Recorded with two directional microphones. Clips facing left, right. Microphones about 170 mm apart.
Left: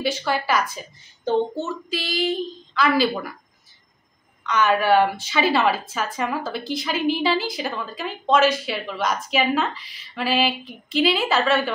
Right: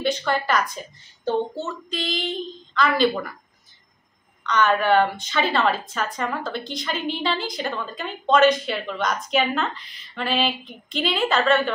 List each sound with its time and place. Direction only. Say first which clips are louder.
0.0 s a woman's voice: right 1 dB; 5° left (ahead or behind)
1.9 s a woman's voice: left 5 dB; 5° left (ahead or behind)
4.4 s a woman's voice: even; 5° left (ahead or behind)